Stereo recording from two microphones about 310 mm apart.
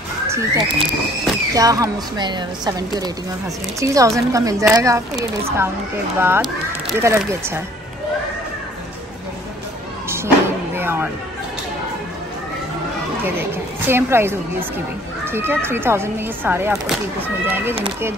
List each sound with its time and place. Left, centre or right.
0.3 s speech: centre
10.0 s music: centre
10.8 s speech: centre
13.8 s speech: centre